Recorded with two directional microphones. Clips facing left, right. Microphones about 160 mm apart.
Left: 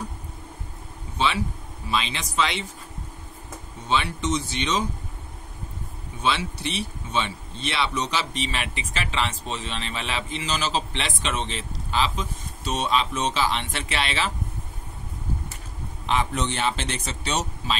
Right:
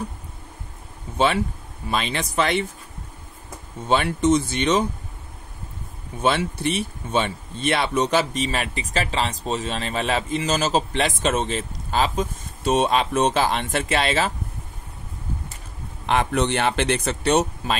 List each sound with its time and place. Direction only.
1.1 s a man's voice: 50° right (ahead or behind)
3.9 s a man's voice: 50° right (ahead or behind)
6.2 s a man's voice: 50° right (ahead or behind)
16.1 s speech: 60° right (ahead or behind)